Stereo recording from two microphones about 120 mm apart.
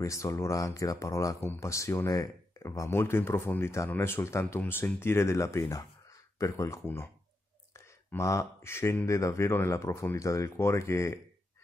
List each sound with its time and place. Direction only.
0.0 s speech: 25° left (ahead or behind)
8.1 s speech: 25° left (ahead or behind)